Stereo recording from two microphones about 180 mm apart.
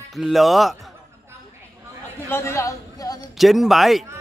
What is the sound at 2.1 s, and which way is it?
Speech, 10° left (ahead or behind).